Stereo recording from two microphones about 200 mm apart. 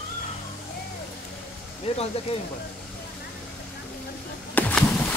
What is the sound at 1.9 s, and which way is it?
Speech, 30° left (ahead or behind).